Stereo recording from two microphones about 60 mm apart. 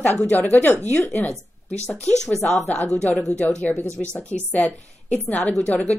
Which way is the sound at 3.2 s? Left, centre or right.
Centre.